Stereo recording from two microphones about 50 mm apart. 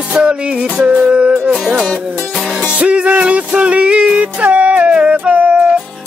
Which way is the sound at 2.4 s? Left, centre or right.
Centre.